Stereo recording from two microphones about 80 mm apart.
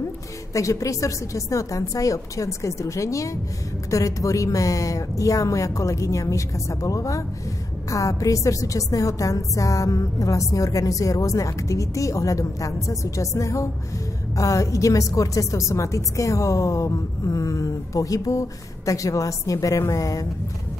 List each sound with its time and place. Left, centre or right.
0.5 s a woman's voice: left